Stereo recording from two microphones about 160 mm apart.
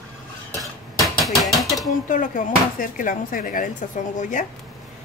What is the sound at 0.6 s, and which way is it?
Dishes, centre (ahead or behind).